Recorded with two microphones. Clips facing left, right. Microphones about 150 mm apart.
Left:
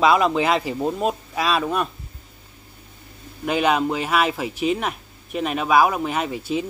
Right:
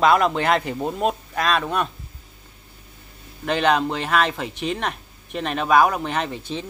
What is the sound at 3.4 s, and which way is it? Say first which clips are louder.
Speech: even; 10° left (ahead or behind).